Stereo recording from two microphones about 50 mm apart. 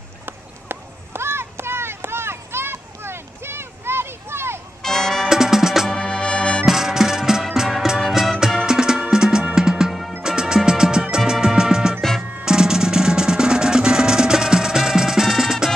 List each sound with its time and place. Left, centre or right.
0.7 s a sound: right
4.8 s music: centre
5.3 s music: centre
5.9 s music: centre
6.6 s music: centre